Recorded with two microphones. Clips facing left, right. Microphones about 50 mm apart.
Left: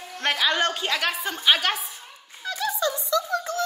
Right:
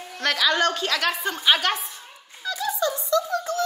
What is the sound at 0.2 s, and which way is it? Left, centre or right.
Speech, left.